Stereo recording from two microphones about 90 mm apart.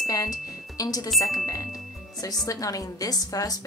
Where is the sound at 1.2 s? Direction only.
40° left (ahead or behind).